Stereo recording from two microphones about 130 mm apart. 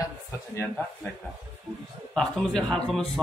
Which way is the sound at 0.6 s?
5° left (ahead or behind).